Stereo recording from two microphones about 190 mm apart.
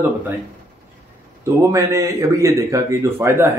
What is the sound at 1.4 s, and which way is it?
Speech, 15° right (ahead or behind).